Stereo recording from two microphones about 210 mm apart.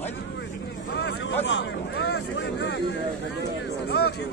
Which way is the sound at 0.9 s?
50° left (ahead or behind).